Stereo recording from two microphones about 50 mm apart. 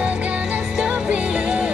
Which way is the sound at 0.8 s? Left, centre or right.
Right.